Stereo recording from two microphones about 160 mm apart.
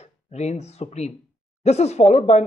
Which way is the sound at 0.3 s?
45° left (ahead or behind).